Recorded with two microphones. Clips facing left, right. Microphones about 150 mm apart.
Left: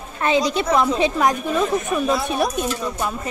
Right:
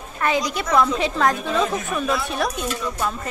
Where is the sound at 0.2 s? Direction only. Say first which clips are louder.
Left 3 dB; 25° left (ahead or behind).